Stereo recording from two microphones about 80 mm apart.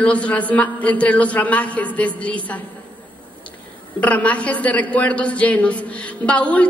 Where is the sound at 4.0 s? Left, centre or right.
Centre.